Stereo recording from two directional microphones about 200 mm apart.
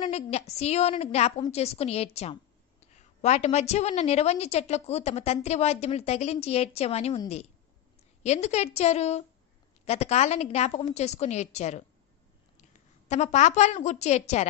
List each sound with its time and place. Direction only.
0.0 s a woman's voice: 30° left (ahead or behind)
13.1 s a woman's voice: 35° left (ahead or behind)